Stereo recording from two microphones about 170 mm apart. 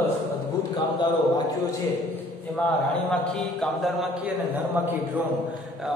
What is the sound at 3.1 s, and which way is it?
Speech, 5° left (ahead or behind).